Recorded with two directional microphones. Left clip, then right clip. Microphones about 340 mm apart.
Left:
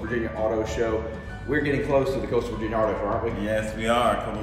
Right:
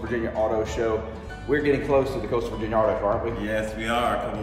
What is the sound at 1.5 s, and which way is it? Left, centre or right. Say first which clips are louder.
A man's voice: right 2 dB; centre.